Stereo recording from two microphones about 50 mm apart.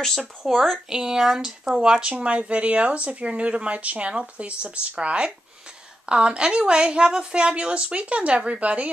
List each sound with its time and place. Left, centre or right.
0.5 s speech: centre
0.8 s speech: centre; by 8.9 s right